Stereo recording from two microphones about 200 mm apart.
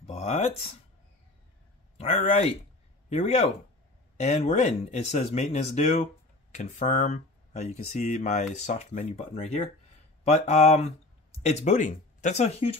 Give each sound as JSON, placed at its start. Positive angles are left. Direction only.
{"t": 0.0, "sound": "speech", "side_deg": 30}
{"t": 2.0, "sound": "speech", "side_deg": 35}